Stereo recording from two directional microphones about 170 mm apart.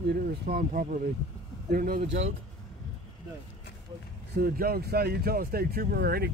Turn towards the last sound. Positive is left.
turn(degrees=-65)  # may be behind; listen again after turning